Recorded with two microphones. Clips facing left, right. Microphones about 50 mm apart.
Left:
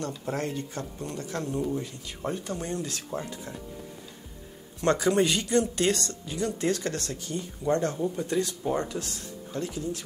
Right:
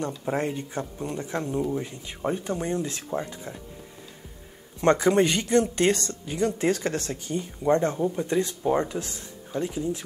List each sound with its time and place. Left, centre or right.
0.2 s speech: right
4.7 s speech: right